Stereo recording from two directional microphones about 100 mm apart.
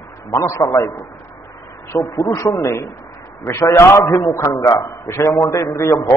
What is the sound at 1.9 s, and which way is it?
A man's voice, 30° left (ahead or behind).